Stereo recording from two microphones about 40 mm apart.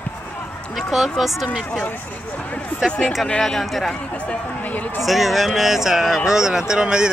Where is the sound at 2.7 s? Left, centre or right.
Left.